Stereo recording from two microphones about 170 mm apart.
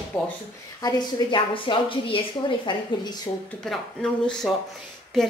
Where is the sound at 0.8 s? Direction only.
25° left (ahead or behind).